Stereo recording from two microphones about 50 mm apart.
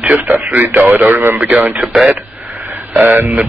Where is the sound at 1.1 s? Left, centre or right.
Right.